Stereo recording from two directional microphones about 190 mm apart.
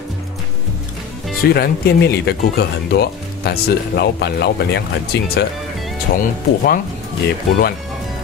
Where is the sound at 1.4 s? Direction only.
55° left (ahead or behind).